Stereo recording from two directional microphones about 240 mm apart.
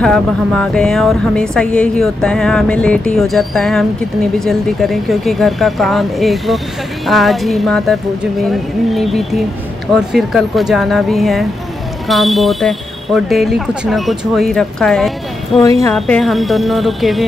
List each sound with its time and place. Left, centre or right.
0.0 s speech: centre